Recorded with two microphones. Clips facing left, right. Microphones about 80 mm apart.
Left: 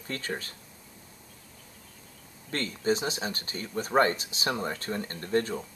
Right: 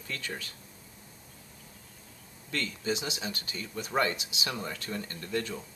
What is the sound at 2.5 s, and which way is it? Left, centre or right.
Speech, left.